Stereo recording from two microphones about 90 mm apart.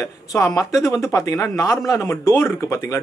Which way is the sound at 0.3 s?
40° left (ahead or behind).